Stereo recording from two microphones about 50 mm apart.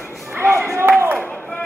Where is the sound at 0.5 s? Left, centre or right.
Right.